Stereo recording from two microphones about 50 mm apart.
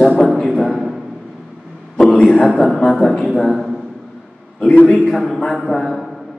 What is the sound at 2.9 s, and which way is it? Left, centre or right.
Speech, centre.